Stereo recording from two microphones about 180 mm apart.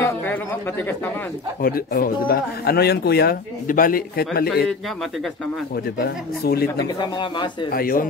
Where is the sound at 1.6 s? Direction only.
55° left (ahead or behind).